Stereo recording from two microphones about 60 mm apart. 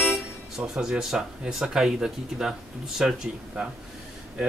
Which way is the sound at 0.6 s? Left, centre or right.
Centre.